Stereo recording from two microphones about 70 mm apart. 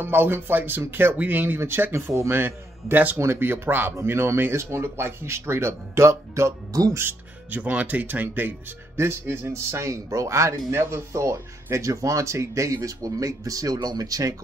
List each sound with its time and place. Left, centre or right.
0.0 s speech: right
6.9 s speech: right
8.9 s a man's voice: right
13.7 s speech: right